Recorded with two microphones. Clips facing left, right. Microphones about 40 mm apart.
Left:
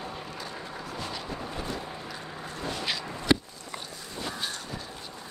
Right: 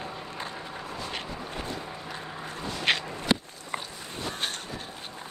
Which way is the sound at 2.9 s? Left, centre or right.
Right.